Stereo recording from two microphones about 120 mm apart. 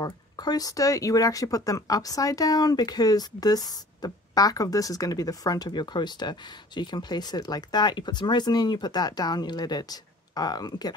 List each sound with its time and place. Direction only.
0.0 s speech: 35° left (ahead or behind)